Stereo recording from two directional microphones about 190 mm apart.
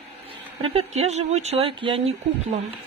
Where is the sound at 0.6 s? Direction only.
30° right (ahead or behind).